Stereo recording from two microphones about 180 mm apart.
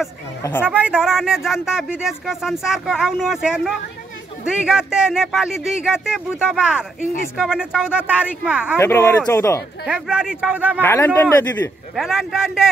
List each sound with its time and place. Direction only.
0.4 s a man's voice: 10° left (ahead or behind)
0.7 s speech: 5° right (ahead or behind)
8.7 s a man's voice: 15° left (ahead or behind)
9.8 s speech: 5° right (ahead or behind)
10.8 s a man's voice: 10° left (ahead or behind)
11.9 s speech: centre (ahead or behind)